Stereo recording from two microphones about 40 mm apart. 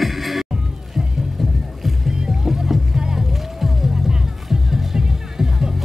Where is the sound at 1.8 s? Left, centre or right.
Centre.